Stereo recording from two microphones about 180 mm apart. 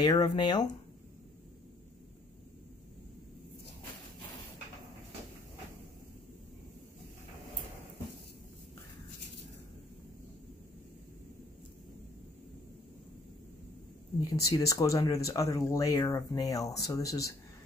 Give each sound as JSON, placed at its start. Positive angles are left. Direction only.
{"t": 0.0, "sound": "speech", "side_deg": 20}
{"t": 14.4, "sound": "speech", "side_deg": 20}